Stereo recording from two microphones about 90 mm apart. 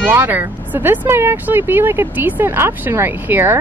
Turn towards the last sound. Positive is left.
turn(degrees=-25)  # may be behind; listen again after turning